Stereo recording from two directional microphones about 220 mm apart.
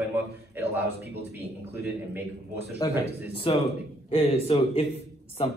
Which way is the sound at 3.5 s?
25° left (ahead or behind).